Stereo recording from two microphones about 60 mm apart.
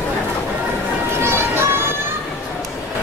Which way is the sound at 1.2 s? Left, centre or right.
Right.